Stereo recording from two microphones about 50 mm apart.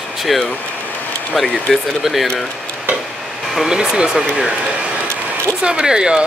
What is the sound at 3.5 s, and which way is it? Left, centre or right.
Speech, centre.